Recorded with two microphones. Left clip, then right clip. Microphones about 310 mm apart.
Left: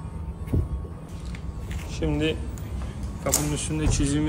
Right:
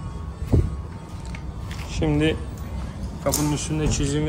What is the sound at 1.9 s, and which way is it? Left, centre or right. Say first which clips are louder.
Speech: right 4 dB; right.